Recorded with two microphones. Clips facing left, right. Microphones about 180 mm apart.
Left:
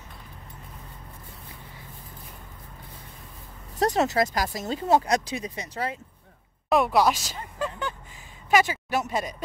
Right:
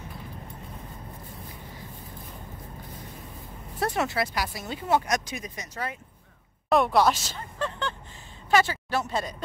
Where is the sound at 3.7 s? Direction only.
40° left (ahead or behind).